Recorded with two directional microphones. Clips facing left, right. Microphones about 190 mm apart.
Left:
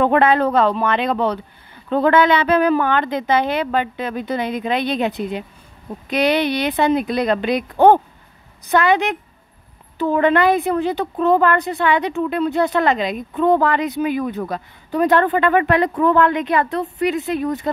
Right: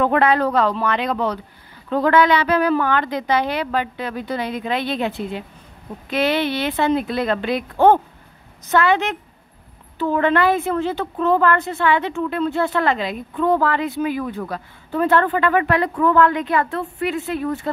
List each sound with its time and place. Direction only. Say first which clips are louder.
0.0 s a woman's voice: left 2 dB; 25° left (ahead or behind)